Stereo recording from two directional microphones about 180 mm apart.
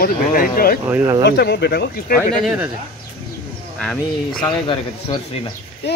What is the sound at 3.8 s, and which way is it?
Speech, 5° left (ahead or behind).